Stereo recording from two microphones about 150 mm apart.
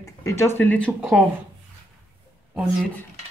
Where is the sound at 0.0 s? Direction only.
20° left (ahead or behind).